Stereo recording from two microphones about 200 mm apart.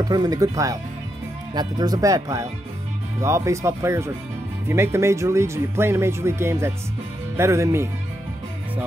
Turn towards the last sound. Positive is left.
turn(degrees=-15)  # may be behind; listen again after turning